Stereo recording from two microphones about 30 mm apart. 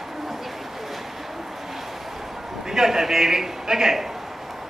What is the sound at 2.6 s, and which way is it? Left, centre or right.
A man's voice, centre.